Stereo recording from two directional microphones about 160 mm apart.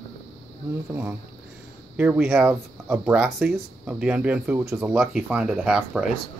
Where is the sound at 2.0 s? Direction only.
10° right (ahead or behind).